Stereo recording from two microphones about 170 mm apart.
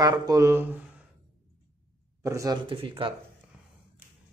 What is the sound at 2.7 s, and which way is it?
Speech, 30° right (ahead or behind).